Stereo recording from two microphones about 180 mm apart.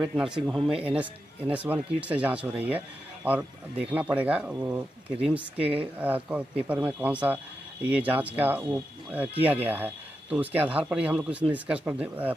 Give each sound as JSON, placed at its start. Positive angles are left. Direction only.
{"t": 0.0, "sound": "speech", "side_deg": -5}
{"t": 5.6, "sound": "a woman's voice", "side_deg": -30}
{"t": 5.9, "sound": "speech", "side_deg": -10}